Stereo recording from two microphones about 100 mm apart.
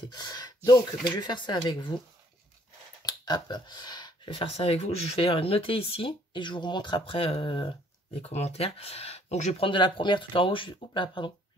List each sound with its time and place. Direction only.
0.1 s gasp: 40° left (ahead or behind)
0.7 s speech: 45° left (ahead or behind)
3.0 s a sound: 40° left (ahead or behind)
4.3 s speech: 75° left (ahead or behind); by 7.7 s 50° left (ahead or behind)
8.2 s speech: 90° left; by 11.3 s 50° left (ahead or behind)